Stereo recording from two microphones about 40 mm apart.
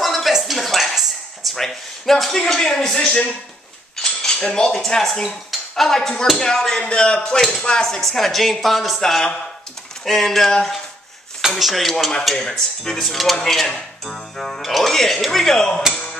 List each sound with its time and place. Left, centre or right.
0.0 s a sound: centre
1.5 s a man's voice: centre
6.8 s a man's voice: left; by 9.0 s centre
10.0 s a man's voice: centre
12.4 s a man's voice: centre
13.0 s a man's voice: centre